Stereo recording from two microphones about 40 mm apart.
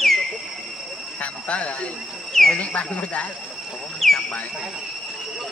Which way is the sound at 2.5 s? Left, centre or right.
Left.